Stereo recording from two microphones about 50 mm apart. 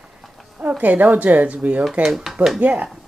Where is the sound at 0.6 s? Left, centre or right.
Right.